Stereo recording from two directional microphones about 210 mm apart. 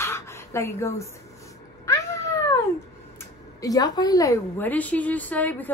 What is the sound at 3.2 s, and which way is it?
A woman's voice, 15° left (ahead or behind).